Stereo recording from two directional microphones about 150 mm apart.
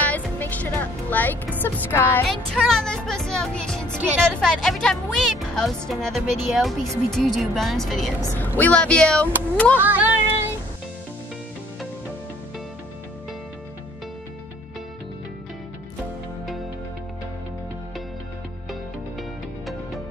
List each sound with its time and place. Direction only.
0.0 s music: 10° left (ahead or behind)
1.6 s speech: 15° left (ahead or behind)
2.2 s speech: 5° left (ahead or behind)
9.8 s a sound: 10° right (ahead or behind)
18.7 s music: centre (ahead or behind)